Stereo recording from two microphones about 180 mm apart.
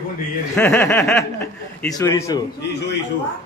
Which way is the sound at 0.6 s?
10° left (ahead or behind).